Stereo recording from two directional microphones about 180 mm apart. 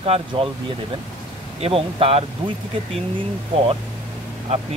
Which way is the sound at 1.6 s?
30° right (ahead or behind).